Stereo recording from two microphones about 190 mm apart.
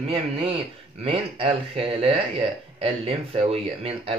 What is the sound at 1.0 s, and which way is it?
A man's voice, 30° right (ahead or behind).